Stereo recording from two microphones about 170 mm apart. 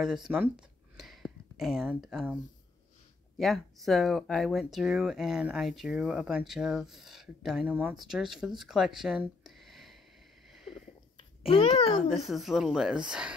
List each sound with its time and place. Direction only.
0.0 s speech: 5° right (ahead or behind)
10.7 s a sound: 30° left (ahead or behind)
12.3 s speech: centre (ahead or behind)